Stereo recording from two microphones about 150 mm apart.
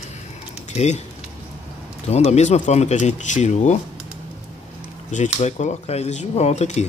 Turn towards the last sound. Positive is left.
turn(degrees=45)  # may be behind; listen again after turning